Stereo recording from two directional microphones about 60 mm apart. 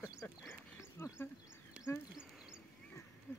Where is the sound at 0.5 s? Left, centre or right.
Left.